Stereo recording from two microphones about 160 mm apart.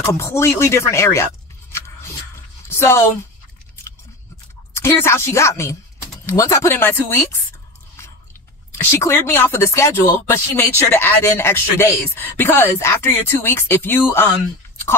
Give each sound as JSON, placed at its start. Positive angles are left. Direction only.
{"t": 0.1, "sound": "speech", "side_deg": 15}
{"t": 3.8, "sound": "biting", "side_deg": 15}
{"t": 4.7, "sound": "speech", "side_deg": 15}
{"t": 8.7, "sound": "speech", "side_deg": 15}